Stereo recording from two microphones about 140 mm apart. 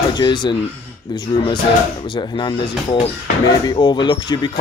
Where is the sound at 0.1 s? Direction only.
30° left (ahead or behind).